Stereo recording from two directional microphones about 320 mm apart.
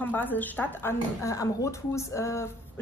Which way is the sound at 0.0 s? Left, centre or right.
Centre.